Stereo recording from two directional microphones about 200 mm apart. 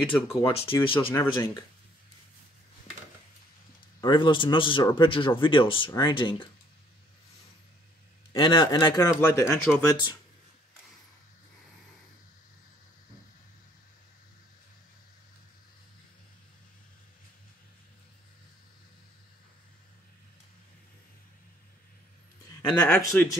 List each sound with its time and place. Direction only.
0.3 s speech: 30° left (ahead or behind)
4.0 s speech: 25° left (ahead or behind)
8.3 s speech: 20° left (ahead or behind)
22.7 s speech: 5° left (ahead or behind)
23.0 s speech: 15° left (ahead or behind)